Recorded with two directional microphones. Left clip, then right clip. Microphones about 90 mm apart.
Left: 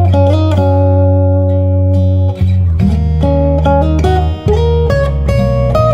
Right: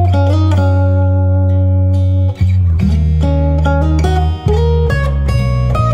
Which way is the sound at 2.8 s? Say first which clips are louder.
Left 4 dB; 35° left (ahead or behind).